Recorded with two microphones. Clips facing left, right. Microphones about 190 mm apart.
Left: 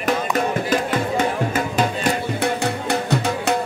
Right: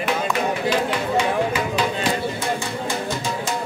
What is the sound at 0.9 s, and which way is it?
Music, 45° left (ahead or behind).